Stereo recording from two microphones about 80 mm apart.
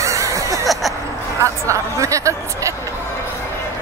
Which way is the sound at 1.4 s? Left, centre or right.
Right.